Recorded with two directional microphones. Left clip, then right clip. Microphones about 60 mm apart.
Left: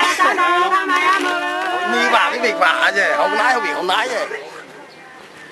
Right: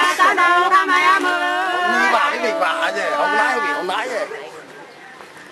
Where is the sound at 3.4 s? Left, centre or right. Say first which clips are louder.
Left 1 dB; left.